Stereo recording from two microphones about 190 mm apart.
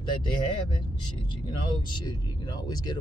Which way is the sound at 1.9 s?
20° left (ahead or behind).